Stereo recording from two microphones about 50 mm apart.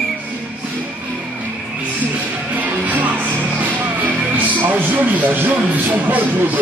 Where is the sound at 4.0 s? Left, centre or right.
Right.